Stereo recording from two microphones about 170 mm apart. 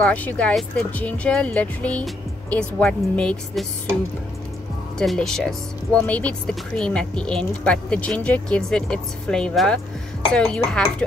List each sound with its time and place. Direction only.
0.0 s speech: 10° left (ahead or behind)
4.9 s speech: 5° left (ahead or behind)